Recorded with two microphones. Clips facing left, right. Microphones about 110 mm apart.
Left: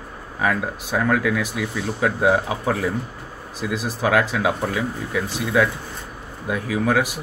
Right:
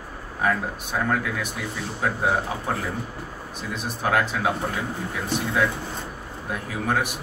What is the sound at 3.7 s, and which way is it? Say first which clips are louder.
Speech: left 4 dB; 90° left.